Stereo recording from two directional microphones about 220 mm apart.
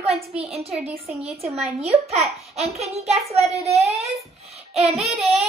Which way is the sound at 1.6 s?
30° right (ahead or behind).